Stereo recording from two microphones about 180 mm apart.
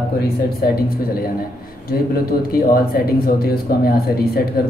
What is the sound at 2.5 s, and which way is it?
A man's voice, 55° left (ahead or behind).